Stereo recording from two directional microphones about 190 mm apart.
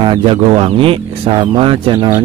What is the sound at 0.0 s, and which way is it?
Speech, 25° right (ahead or behind).